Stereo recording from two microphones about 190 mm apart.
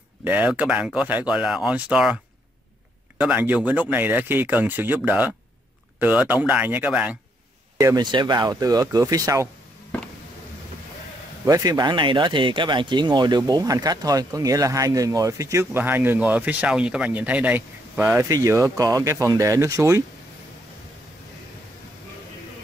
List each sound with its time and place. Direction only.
0.2 s speech: 10° right (ahead or behind)
3.2 s speech: 10° right (ahead or behind)
7.7 s speech: 20° right (ahead or behind)
11.4 s speech: 20° right (ahead or behind)